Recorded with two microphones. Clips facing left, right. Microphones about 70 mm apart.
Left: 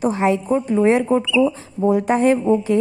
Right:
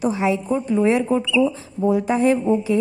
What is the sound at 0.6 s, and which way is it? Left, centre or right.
Speech, left.